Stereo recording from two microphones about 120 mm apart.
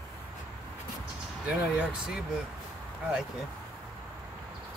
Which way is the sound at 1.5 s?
10° right (ahead or behind).